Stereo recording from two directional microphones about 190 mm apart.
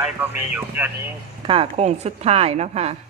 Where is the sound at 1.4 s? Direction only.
30° right (ahead or behind).